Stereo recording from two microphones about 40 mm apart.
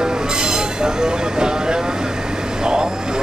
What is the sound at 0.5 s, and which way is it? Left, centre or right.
Train, centre.